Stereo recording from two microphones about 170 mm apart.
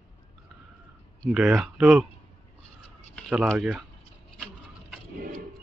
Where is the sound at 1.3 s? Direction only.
5° right (ahead or behind).